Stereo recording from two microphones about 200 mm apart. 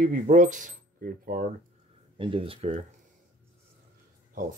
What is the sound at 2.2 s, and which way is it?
Speech, 25° right (ahead or behind).